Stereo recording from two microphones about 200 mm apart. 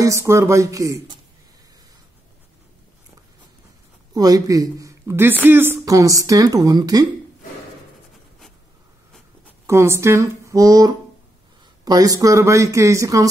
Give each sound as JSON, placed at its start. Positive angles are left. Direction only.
{"t": 0.0, "sound": "speech", "side_deg": -15}
{"t": 4.1, "sound": "a woman's voice", "side_deg": -20}
{"t": 9.7, "sound": "speech", "side_deg": -15}